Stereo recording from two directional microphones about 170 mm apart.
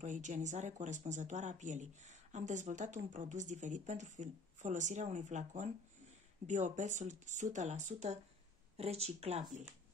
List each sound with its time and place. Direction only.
0.0 s speech: 45° right (ahead or behind)